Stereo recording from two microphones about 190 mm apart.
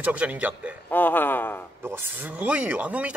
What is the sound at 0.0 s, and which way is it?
Speech, 5° right (ahead or behind).